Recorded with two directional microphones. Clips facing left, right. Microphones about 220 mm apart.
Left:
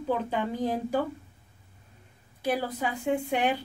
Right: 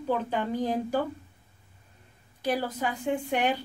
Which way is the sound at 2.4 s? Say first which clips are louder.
Even; 5° left (ahead or behind).